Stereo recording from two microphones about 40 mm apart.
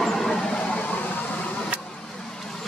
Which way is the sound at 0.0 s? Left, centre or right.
Centre.